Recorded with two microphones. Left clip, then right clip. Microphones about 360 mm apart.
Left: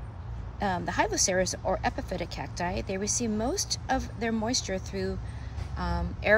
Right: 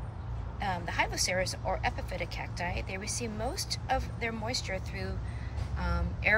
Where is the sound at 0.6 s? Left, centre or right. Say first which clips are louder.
Left 4 dB; centre.